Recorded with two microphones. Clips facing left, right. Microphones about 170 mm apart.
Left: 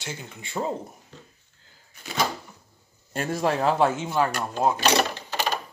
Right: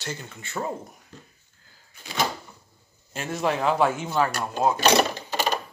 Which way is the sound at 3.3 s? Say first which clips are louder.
Left 1 dB; 35° left (ahead or behind).